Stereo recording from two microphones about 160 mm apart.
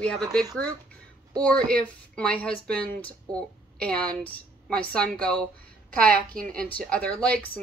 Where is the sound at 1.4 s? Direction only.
5° left (ahead or behind).